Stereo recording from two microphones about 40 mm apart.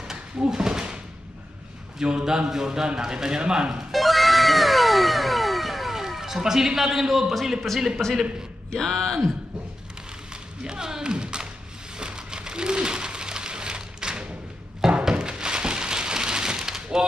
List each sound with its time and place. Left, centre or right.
0.1 s a sound: centre
2.0 s a man's voice: centre
3.9 s cat: centre
8.0 s speech: centre
10.6 s speech: centre
12.0 s a sound: right